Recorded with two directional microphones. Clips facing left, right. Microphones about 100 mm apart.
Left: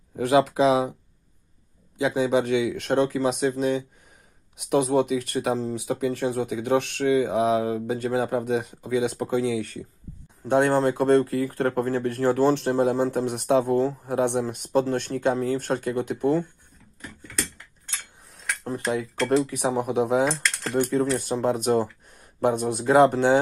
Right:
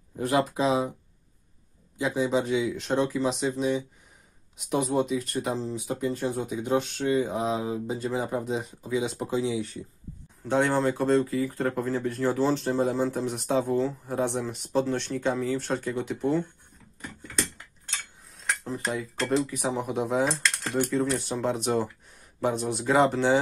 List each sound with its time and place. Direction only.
0.2 s speech: 85° left
2.0 s speech: 75° left (ahead or behind); by 3.8 s 50° left (ahead or behind)
4.6 s speech: 70° left (ahead or behind)
5.8 s speech: 80° left; by 16.4 s 50° left (ahead or behind)
19.4 s speech: 65° left (ahead or behind)
20.7 s speech: 50° left (ahead or behind)